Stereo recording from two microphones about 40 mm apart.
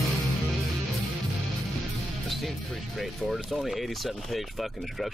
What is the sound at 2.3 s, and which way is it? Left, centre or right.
Music, centre.